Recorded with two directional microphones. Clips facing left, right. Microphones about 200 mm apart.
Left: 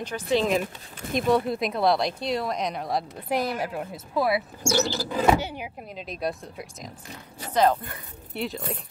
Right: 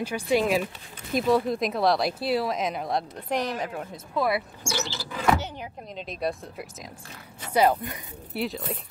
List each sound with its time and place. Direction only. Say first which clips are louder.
0.0 s speech: even; 10° right (ahead or behind)
4.6 s rodents: left 7 dB; 40° left (ahead or behind)
5.4 s speech: left 3 dB; 10° left (ahead or behind)
7.5 s speech: even; 10° right (ahead or behind)
8.3 s speech: right 1 dB; centre (ahead or behind)